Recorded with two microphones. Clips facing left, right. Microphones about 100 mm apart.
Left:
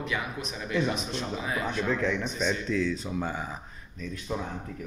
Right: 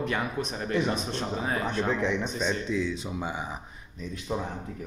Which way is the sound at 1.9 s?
20° right (ahead or behind).